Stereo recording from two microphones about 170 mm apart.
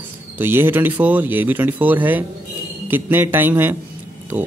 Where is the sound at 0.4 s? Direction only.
10° right (ahead or behind).